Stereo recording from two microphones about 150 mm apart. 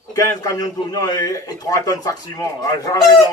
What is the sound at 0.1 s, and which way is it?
A man's voice, 25° left (ahead or behind).